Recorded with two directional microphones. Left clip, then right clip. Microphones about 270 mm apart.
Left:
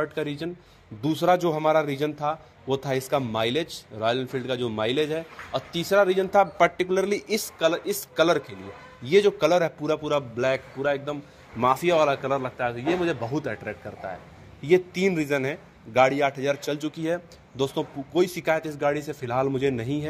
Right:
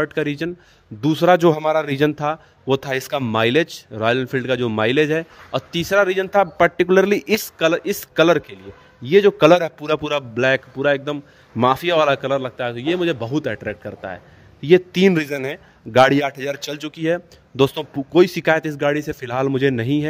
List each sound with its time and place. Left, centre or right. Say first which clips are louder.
0.0 s a man's voice: right 7 dB; right